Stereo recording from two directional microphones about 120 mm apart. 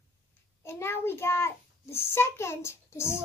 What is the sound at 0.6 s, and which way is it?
A child's voice, 20° left (ahead or behind).